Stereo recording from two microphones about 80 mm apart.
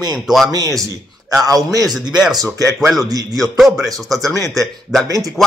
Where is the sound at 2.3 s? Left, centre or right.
Right.